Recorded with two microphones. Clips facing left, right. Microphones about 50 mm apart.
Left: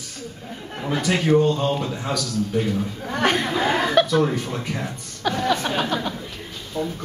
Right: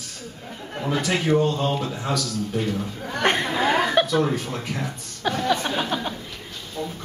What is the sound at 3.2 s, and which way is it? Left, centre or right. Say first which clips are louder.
Speech: left 1 dB; centre.